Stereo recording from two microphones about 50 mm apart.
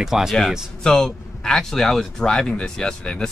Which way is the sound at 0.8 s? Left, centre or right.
Centre.